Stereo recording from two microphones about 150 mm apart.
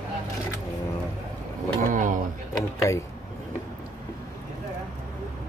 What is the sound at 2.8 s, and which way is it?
Speech, 20° left (ahead or behind).